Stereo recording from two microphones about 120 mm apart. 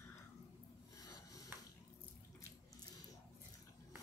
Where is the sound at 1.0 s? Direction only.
30° left (ahead or behind).